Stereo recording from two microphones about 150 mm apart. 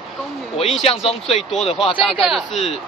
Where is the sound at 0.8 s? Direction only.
40° left (ahead or behind).